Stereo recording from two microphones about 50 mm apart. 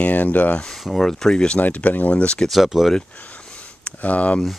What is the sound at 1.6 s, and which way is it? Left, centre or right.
Speech, left.